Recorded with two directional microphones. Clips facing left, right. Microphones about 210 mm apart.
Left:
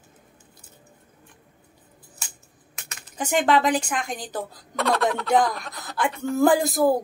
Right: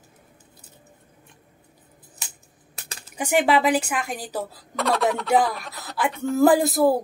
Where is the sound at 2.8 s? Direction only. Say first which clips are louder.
Right 3 dB; 35° right (ahead or behind).